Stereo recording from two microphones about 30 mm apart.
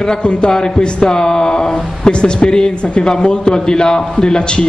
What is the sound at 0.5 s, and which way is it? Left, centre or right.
A man's voice, left.